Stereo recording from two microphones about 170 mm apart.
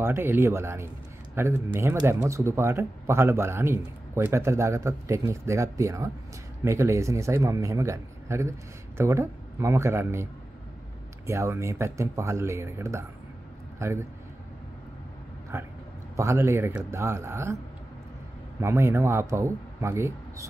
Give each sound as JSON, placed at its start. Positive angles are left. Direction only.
{"t": 0.0, "sound": "speech", "side_deg": -15}
{"t": 11.2, "sound": "a man's voice", "side_deg": -15}
{"t": 15.5, "sound": "speech", "side_deg": -15}
{"t": 18.6, "sound": "speech", "side_deg": -15}